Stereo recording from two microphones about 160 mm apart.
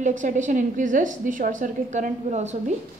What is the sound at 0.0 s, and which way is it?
A woman's voice, 50° right (ahead or behind).